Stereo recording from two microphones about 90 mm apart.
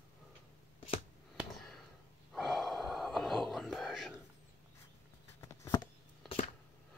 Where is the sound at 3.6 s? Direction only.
Centre (ahead or behind).